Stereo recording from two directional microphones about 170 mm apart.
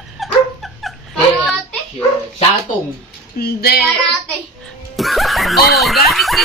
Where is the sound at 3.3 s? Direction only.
65° left (ahead or behind).